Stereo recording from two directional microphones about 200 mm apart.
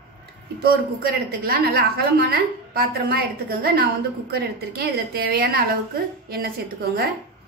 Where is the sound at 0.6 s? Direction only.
50° right (ahead or behind).